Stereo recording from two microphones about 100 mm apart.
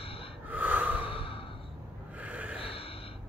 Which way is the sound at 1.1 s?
70° left (ahead or behind).